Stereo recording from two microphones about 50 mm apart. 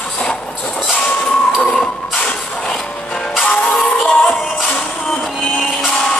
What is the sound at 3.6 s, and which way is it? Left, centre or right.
Music, centre.